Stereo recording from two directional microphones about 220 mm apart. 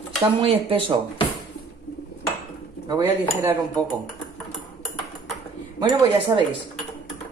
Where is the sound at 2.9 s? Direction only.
15° right (ahead or behind).